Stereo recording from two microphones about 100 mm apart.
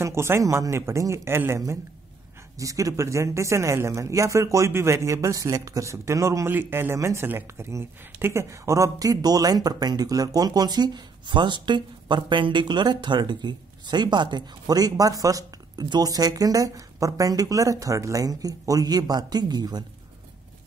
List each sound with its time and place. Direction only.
0.0 s speech: 25° right (ahead or behind)
2.6 s speech: 35° right (ahead or behind)